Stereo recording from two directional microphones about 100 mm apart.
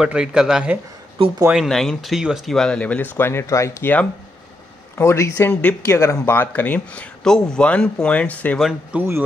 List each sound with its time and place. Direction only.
0.0 s speech: 10° right (ahead or behind); by 3.9 s 30° left (ahead or behind)
4.9 s speech: 30° left (ahead or behind)
5.9 s speech: 30° left (ahead or behind); by 8.5 s 15° left (ahead or behind)
8.9 s speech: 10° right (ahead or behind)